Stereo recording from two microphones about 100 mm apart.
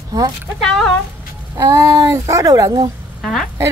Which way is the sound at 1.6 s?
30° right (ahead or behind).